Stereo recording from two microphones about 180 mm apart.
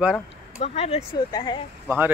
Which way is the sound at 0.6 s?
35° left (ahead or behind).